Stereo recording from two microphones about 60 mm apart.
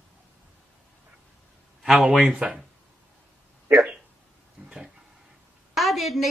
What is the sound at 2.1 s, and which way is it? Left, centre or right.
Speech, centre.